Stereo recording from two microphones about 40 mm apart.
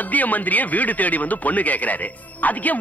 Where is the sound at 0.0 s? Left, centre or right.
Left.